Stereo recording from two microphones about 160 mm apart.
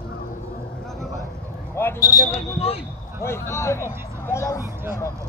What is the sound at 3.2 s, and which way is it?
Speech, 15° left (ahead or behind).